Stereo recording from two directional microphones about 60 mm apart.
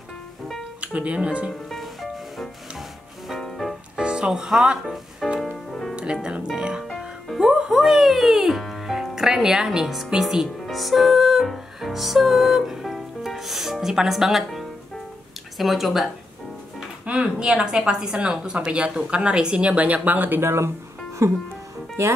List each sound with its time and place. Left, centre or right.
0.7 s speech: right
1.5 s music: centre
4.0 s speech: centre
5.4 s music: centre
6.4 s a woman's voice: centre
7.0 s music: centre
7.8 s a child's voice: centre
10.6 s music: centre
15.5 s speech: centre
17.0 s a woman's voice: centre; by 20.7 s right
21.2 s speech: right